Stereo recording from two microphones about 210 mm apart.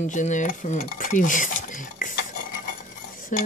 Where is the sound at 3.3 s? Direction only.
35° left (ahead or behind).